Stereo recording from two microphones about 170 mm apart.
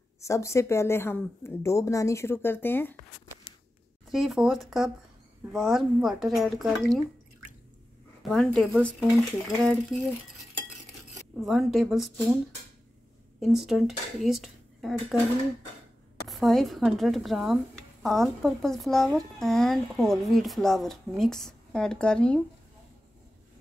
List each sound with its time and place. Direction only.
0.2 s speech: 15° left (ahead or behind)
4.1 s speech: centre (ahead or behind)
8.2 s a sound: centre (ahead or behind)
8.8 s speech: centre (ahead or behind)
11.4 s speech: centre (ahead or behind)
13.4 s speech: centre (ahead or behind)
16.3 s speech: centre (ahead or behind)